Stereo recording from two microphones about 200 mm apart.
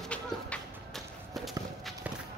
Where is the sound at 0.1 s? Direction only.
5° left (ahead or behind).